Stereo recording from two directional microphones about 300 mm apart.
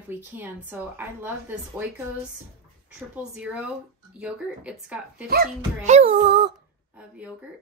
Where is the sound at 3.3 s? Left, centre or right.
Centre.